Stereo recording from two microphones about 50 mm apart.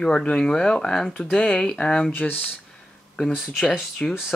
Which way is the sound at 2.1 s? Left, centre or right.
Left.